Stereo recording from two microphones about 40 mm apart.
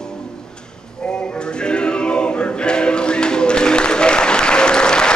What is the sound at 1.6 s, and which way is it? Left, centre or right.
Music, left.